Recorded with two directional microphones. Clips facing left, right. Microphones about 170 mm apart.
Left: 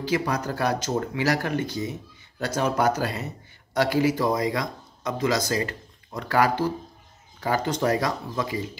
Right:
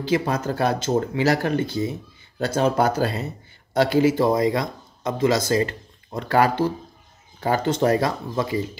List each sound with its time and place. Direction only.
0.0 s speech: 25° right (ahead or behind)